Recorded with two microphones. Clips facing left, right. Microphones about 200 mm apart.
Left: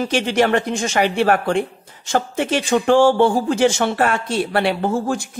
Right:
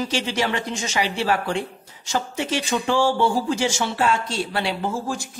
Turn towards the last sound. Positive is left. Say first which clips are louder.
# left 6 dB
turn(degrees=60)  # may be behind; listen again after turning